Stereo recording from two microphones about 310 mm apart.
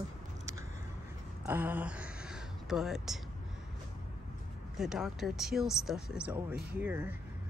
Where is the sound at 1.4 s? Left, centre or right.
Centre.